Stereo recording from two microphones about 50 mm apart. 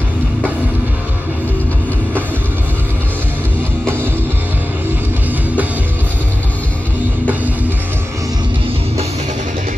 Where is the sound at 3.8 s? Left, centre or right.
Right.